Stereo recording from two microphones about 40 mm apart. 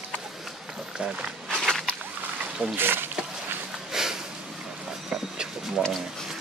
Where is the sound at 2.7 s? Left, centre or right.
Right.